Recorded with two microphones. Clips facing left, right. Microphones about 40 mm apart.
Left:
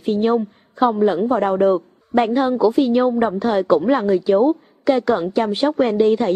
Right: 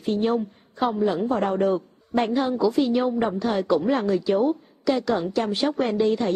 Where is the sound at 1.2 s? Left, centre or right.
Centre.